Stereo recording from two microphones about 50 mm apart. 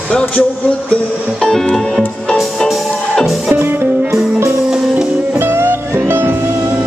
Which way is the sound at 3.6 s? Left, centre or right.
Right.